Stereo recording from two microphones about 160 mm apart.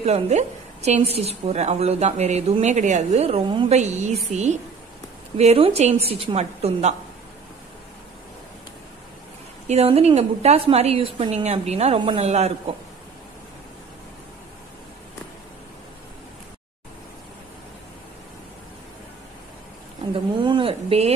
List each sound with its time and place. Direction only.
0.0 s a woman's voice: 45° right (ahead or behind)
3.7 s a woman's voice: 45° right (ahead or behind)
9.7 s a woman's voice: 40° right (ahead or behind)
20.4 s a sound: 30° right (ahead or behind)